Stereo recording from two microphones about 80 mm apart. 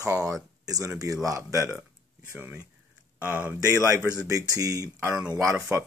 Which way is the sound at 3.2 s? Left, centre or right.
Centre.